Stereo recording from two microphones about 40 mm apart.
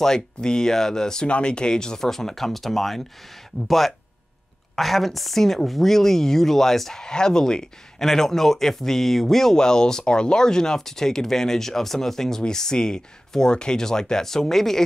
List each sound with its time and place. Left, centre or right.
0.0 s a woman's voice: centre
1.2 s a woman's voice: left; by 14.8 s centre